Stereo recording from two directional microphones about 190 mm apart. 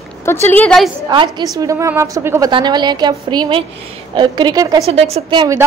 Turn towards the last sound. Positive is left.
turn(degrees=-25)  # may be behind; listen again after turning